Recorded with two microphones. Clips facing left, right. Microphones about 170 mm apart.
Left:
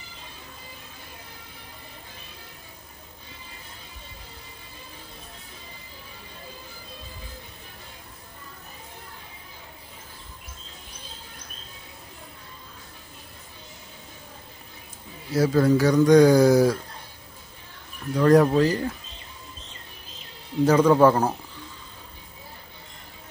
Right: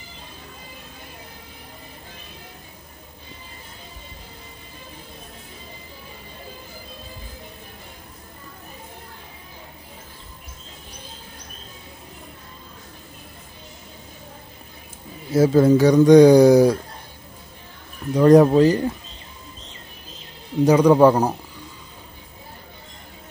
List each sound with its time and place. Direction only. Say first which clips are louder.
15.3 s speech: right 5 dB; 25° right (ahead or behind)
18.1 s speech: right 5 dB; 20° right (ahead or behind)
20.6 s a man's voice: right 3 dB; 15° right (ahead or behind)